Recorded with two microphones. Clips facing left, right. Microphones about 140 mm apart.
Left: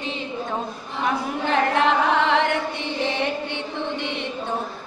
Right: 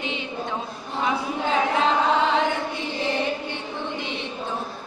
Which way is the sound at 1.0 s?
65° left (ahead or behind).